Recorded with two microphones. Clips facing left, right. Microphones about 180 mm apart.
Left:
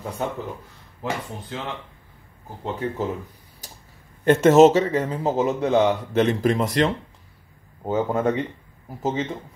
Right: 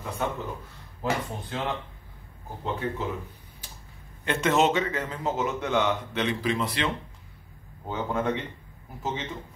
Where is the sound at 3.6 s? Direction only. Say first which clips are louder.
Left 4 dB; 40° left (ahead or behind).